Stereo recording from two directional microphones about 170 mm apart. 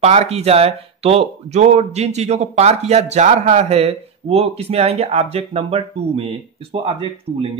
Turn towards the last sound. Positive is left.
turn(degrees=-30)  # may be behind; listen again after turning